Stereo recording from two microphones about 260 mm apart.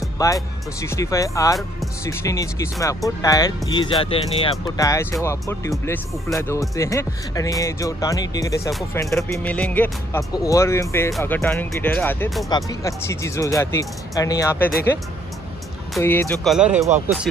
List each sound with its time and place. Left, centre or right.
0.2 s speech: centre
16.0 s speech: centre